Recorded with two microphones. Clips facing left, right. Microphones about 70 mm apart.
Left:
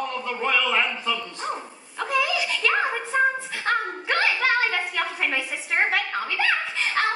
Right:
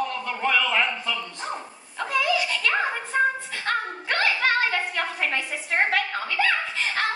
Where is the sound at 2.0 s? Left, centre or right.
Centre.